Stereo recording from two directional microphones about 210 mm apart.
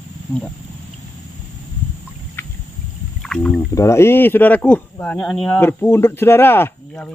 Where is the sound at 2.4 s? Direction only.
10° left (ahead or behind).